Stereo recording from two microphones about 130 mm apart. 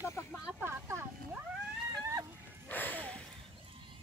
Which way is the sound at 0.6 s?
20° right (ahead or behind).